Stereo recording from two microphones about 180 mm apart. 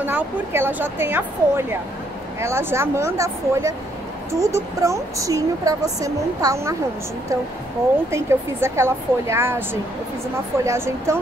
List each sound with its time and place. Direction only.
0.0 s a woman's voice: 10° right (ahead or behind)
8.1 s a woman's voice: 15° right (ahead or behind)